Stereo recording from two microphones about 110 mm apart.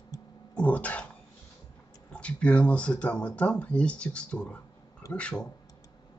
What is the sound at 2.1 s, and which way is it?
Speech, 10° left (ahead or behind).